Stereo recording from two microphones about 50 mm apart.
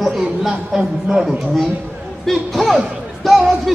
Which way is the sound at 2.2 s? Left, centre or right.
Centre.